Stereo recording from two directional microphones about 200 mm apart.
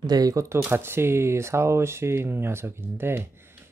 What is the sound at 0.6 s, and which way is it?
Speech, 10° right (ahead or behind).